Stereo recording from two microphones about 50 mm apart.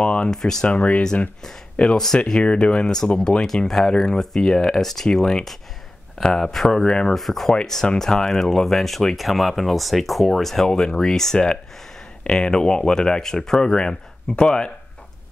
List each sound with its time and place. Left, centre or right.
0.0 s speech: left
0.3 s speech: centre
0.7 s speech: left
2.0 s speech: centre
2.4 s speech: left
3.2 s speech: centre